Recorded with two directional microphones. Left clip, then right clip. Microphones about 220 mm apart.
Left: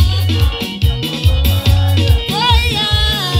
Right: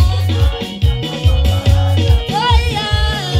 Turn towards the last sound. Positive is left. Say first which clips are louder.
# left 3 dB
turn(degrees=50)  # may be behind; listen again after turning